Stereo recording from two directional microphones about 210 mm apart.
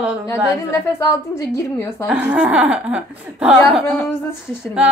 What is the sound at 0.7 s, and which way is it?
A woman's voice, 15° left (ahead or behind).